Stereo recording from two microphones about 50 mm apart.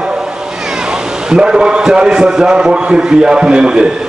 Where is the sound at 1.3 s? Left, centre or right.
Centre.